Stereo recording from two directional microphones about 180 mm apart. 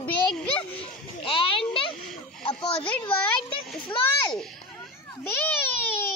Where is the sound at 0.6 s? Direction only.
30° left (ahead or behind).